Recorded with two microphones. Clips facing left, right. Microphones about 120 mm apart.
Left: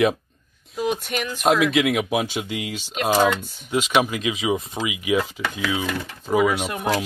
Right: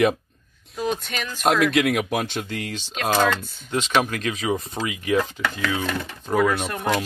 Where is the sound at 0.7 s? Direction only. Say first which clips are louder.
Left 2 dB; 5° left (ahead or behind).